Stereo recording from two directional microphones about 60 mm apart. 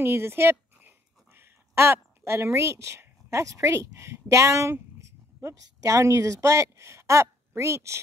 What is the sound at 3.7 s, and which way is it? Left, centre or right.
Speech, right.